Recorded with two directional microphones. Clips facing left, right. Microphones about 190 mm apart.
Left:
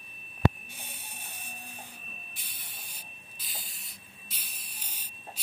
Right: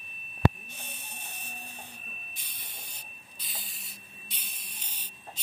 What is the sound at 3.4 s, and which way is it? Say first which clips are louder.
Spray: even; centre (ahead or behind).